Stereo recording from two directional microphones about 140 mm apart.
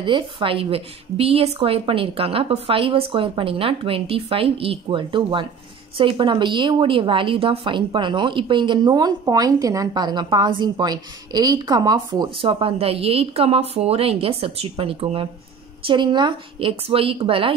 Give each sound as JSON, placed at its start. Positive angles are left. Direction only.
{"t": 0.0, "sound": "a woman's voice", "side_deg": -35}